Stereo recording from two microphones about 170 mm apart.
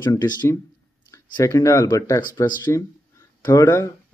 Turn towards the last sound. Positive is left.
turn(degrees=15)  # may be behind; listen again after turning